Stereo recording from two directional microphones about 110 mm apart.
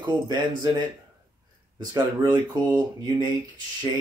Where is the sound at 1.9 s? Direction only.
40° right (ahead or behind).